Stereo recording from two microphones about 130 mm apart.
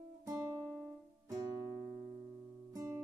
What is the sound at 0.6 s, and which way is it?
Music, centre (ahead or behind).